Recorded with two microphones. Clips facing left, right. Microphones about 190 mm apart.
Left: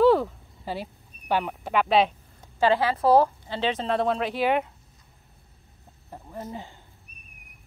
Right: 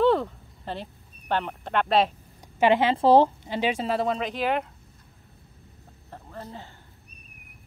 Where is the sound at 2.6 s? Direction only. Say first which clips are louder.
Right 2 dB; 20° right (ahead or behind).